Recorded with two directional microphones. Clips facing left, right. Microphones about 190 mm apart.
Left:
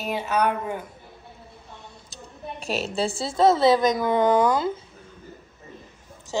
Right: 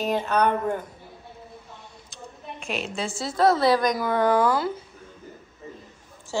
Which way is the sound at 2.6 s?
35° left (ahead or behind).